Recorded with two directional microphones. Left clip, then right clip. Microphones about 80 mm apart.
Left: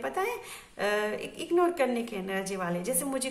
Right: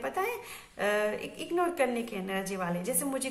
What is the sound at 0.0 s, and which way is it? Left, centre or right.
A woman's voice, left.